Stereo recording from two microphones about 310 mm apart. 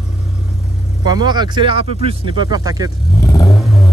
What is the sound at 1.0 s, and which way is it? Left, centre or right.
Speech, centre.